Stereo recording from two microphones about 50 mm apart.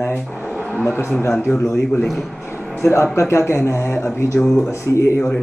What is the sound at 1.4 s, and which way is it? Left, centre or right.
Speech, left.